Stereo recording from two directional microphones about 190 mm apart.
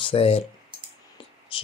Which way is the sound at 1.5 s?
30° left (ahead or behind).